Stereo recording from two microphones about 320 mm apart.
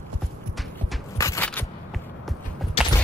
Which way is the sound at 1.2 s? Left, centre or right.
Centre.